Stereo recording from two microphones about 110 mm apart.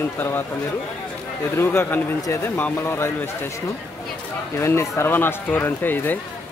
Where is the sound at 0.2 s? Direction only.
20° left (ahead or behind).